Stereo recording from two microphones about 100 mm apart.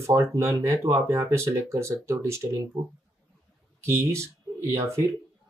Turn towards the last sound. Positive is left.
turn(degrees=-30)  # may be behind; listen again after turning